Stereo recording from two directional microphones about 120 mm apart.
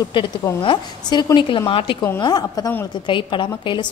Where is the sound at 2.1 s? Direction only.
35° left (ahead or behind).